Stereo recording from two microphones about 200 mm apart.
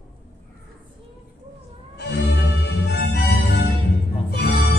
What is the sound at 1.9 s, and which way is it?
Music, 55° left (ahead or behind).